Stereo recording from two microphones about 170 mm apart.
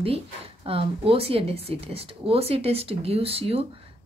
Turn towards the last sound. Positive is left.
turn(degrees=-35)  # may be behind; listen again after turning